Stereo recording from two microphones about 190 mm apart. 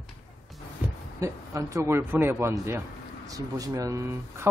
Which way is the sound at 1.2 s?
15° right (ahead or behind).